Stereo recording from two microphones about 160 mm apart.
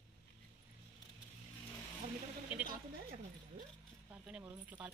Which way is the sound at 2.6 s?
65° right (ahead or behind).